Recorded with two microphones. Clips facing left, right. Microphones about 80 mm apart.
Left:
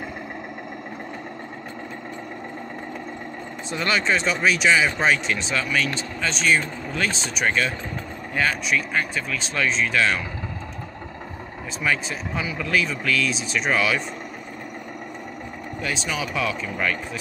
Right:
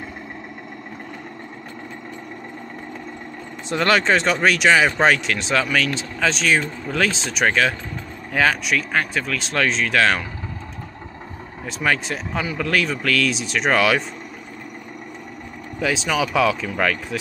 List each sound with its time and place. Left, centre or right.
3.7 s speech: right
5.0 s speech: right
11.8 s speech: right
15.9 s speech: right